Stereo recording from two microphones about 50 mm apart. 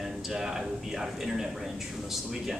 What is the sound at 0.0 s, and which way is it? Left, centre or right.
Speech, centre.